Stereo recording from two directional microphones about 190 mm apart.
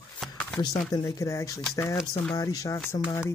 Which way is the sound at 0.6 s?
20° left (ahead or behind).